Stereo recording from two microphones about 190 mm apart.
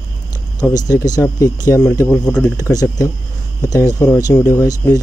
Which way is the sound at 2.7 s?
20° left (ahead or behind).